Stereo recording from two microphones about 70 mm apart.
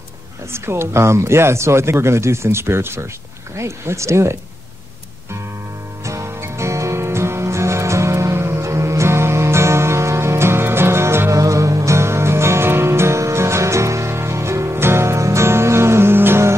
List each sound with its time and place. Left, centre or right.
0.5 s speech: right
6.0 s music: right